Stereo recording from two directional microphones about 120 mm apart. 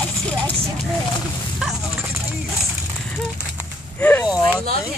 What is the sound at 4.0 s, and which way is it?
Speech, 15° left (ahead or behind).